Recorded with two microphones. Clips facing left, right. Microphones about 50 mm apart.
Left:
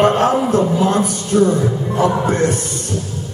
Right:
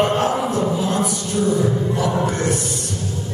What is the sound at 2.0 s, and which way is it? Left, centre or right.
Speech, left.